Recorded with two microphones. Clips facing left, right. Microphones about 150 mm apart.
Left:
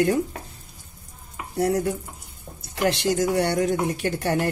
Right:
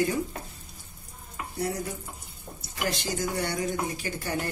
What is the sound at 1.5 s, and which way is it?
Stir, 75° left (ahead or behind).